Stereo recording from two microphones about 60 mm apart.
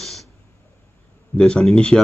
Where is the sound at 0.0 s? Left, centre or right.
Centre.